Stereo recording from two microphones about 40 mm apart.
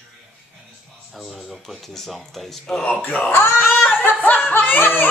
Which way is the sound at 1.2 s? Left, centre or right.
Centre.